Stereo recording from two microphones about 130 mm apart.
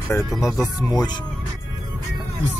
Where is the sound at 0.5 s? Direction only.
25° left (ahead or behind).